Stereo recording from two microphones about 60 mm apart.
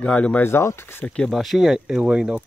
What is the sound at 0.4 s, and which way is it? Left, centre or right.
Speech, left.